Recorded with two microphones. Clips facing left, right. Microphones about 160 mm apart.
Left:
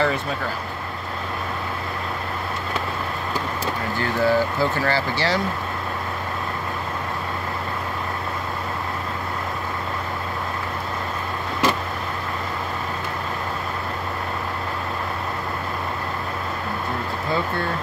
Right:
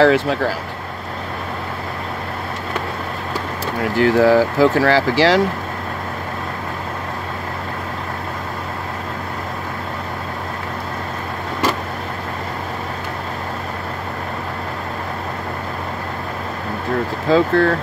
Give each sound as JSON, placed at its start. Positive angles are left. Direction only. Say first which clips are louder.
{"t": 0.0, "sound": "speech", "louder": "right 9 dB", "side_deg": -90}
{"t": 3.9, "sound": "speech", "louder": "right 8 dB", "side_deg": -90}
{"t": 17.3, "sound": "speech", "louder": "right 11 dB", "side_deg": -90}